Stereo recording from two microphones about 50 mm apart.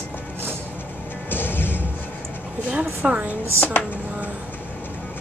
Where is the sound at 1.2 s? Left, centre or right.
Left.